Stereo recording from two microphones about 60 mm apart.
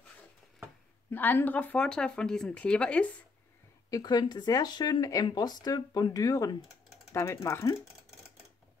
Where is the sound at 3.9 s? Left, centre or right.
Left.